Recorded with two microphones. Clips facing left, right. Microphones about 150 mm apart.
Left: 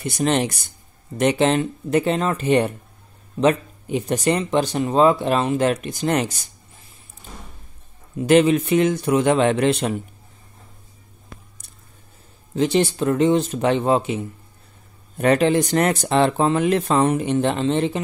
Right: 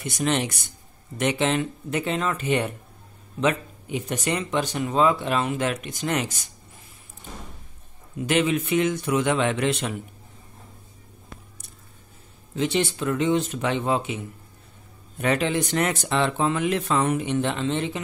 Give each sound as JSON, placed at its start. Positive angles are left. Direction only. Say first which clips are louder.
{"t": 0.0, "sound": "speech", "louder": "left 4 dB", "side_deg": 35}
{"t": 8.2, "sound": "speech", "louder": "left 7 dB", "side_deg": 35}
{"t": 12.5, "sound": "speech", "louder": "left 5 dB", "side_deg": 35}